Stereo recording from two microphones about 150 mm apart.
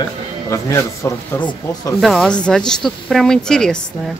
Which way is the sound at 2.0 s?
Centre (ahead or behind).